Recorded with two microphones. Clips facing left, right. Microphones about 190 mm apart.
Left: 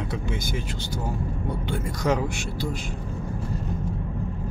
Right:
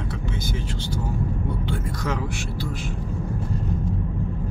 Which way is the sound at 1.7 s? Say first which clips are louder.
Left 7 dB; 15° left (ahead or behind).